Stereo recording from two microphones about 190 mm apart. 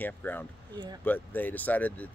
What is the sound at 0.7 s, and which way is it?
Speech, 20° right (ahead or behind).